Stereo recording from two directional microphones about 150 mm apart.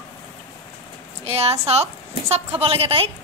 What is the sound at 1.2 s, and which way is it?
A woman's voice, 45° right (ahead or behind).